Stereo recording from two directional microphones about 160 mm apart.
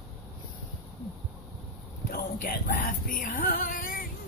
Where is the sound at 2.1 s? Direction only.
60° left (ahead or behind).